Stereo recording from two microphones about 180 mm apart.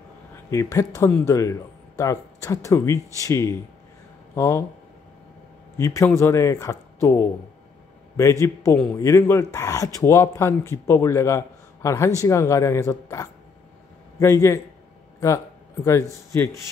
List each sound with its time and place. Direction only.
0.5 s speech: 15° left (ahead or behind)
5.8 s speech: 15° left (ahead or behind)